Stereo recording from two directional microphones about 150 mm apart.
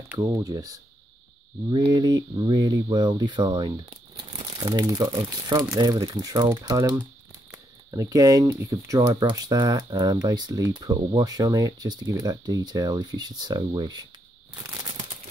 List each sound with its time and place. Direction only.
0.2 s speech: 20° right (ahead or behind)